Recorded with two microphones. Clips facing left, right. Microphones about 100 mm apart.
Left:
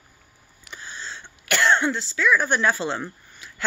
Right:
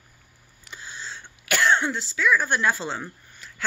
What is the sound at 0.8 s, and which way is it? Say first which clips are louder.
Throat clearing: left 1 dB; 5° right (ahead or behind).